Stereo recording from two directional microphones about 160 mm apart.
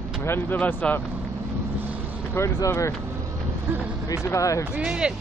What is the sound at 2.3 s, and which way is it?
Speech, 15° left (ahead or behind).